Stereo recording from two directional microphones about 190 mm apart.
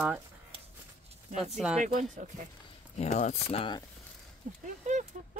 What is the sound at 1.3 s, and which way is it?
Speech, 35° right (ahead or behind).